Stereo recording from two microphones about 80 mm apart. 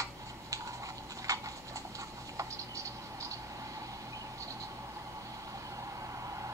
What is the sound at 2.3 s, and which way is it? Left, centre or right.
Patter, right.